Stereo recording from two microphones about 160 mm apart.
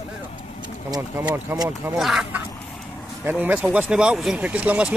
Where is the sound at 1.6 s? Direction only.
5° right (ahead or behind).